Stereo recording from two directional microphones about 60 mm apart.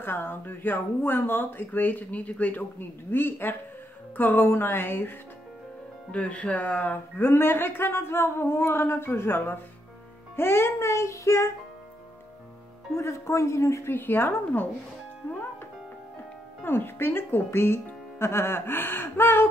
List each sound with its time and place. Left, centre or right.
0.0 s speech: left
3.1 s speech: left
6.1 s speech: left
12.9 s speech: left
13.9 s speech: left
16.6 s speech: left